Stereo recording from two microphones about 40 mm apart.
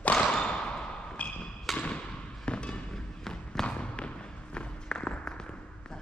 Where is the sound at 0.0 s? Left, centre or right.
Left.